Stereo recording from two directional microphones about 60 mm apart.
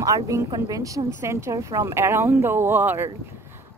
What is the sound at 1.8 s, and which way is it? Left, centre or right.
A woman's voice, right.